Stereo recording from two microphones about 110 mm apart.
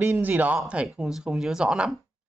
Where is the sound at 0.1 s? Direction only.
15° right (ahead or behind).